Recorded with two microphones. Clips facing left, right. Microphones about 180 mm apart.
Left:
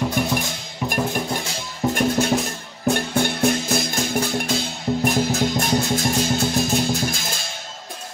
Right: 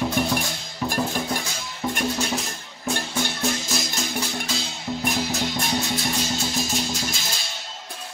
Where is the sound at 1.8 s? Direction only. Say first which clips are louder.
Left 6 dB; 50° left (ahead or behind).